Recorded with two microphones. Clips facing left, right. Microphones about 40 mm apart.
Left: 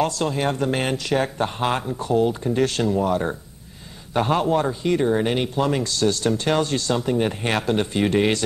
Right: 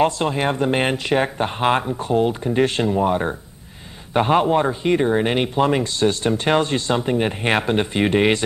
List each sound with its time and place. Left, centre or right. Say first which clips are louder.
0.0 s speech: right 3 dB; right